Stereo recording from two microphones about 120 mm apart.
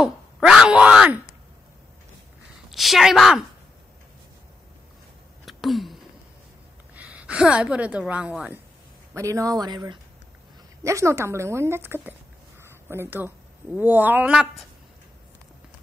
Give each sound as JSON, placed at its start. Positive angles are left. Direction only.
{"t": 0.0, "sound": "speech", "side_deg": -5}
{"t": 2.7, "sound": "a woman's voice", "side_deg": 0}
{"t": 5.4, "sound": "a sound", "side_deg": 0}
{"t": 7.0, "sound": "a woman's voice", "side_deg": -10}
{"t": 9.1, "sound": "a woman's voice", "side_deg": -25}
{"t": 10.8, "sound": "a woman's voice", "side_deg": -25}